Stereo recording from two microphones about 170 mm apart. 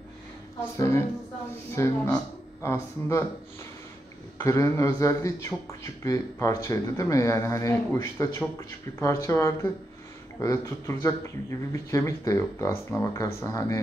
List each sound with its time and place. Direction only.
0.7 s a man's voice: 15° left (ahead or behind)
4.4 s a man's voice: 15° left (ahead or behind)